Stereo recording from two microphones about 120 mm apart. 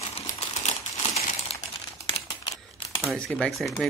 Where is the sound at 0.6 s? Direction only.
60° left (ahead or behind).